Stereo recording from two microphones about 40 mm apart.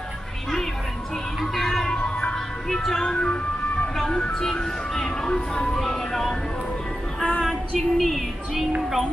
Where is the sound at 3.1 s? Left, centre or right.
Left.